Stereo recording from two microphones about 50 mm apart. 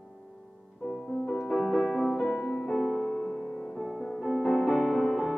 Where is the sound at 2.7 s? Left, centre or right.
Centre.